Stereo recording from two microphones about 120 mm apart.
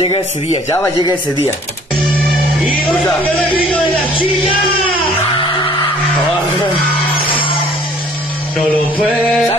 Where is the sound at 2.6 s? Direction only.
45° left (ahead or behind).